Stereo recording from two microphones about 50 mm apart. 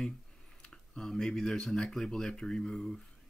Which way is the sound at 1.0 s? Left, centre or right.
Centre.